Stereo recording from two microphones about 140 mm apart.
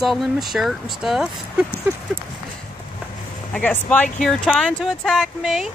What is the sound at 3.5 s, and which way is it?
Speech, 10° left (ahead or behind).